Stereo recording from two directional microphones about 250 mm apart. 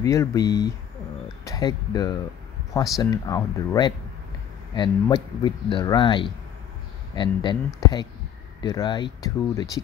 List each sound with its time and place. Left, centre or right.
0.0 s speech: centre